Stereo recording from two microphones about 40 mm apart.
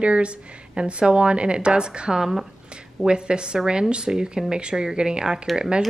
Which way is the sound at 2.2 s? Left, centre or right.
Centre.